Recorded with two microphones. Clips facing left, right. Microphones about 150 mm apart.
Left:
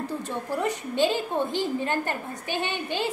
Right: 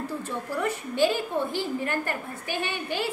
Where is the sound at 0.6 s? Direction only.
20° left (ahead or behind).